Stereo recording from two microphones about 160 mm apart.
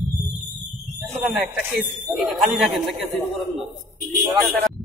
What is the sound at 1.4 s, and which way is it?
Speech, 5° right (ahead or behind).